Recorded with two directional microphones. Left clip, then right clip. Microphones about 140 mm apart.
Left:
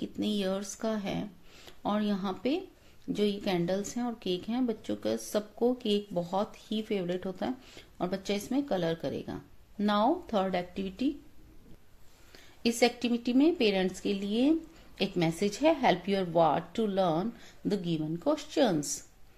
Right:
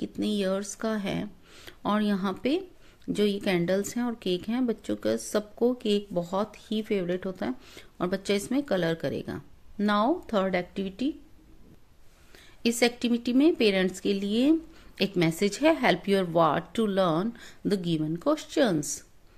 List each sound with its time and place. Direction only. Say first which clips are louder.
0.0 s speech: right 3 dB; 30° right (ahead or behind)
12.6 s speech: right 2 dB; 35° right (ahead or behind)